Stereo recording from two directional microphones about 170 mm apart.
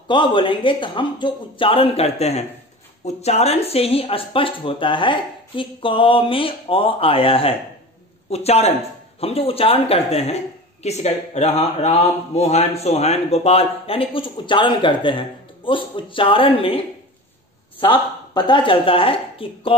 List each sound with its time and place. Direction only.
0.1 s speech: 30° left (ahead or behind)